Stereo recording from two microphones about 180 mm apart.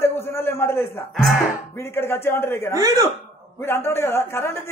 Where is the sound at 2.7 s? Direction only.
15° right (ahead or behind).